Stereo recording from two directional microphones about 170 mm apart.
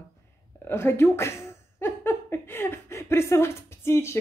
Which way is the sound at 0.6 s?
15° left (ahead or behind).